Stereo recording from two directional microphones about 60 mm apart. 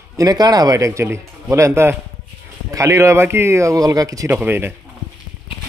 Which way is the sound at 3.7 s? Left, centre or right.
Right.